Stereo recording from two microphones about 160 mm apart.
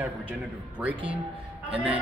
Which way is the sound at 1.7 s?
10° right (ahead or behind).